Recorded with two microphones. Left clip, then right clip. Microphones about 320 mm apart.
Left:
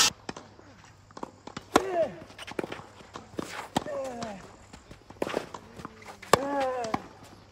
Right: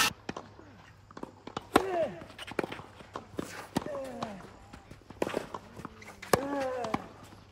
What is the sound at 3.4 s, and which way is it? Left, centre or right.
Walk, centre.